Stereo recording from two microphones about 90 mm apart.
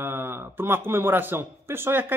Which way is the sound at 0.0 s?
25° right (ahead or behind).